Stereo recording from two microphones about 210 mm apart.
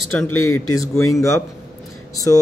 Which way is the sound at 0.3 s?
90° left.